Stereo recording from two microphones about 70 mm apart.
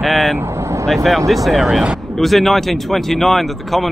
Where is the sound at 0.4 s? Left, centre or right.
Right.